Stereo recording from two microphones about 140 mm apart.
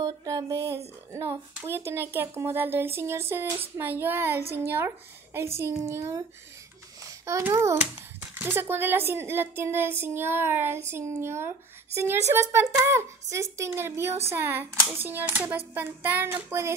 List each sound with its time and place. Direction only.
0.0 s speech: 25° right (ahead or behind)
7.2 s speech: 20° right (ahead or behind)